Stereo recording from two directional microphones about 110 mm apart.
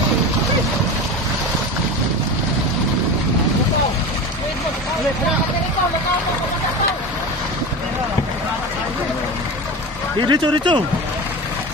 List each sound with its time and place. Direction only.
10.2 s speech: 45° right (ahead or behind)